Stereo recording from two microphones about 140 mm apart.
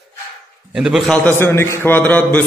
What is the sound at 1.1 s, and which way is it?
A man's voice, 15° left (ahead or behind).